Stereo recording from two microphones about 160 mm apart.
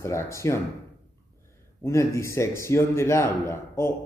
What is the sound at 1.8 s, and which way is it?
Speech, 15° left (ahead or behind).